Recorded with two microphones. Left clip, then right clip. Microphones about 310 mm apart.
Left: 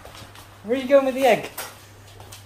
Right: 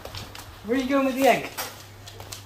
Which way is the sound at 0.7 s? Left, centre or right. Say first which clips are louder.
Left 6 dB; left.